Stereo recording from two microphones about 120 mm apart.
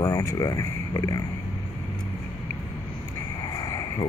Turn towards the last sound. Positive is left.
turn(degrees=30)  # may be behind; listen again after turning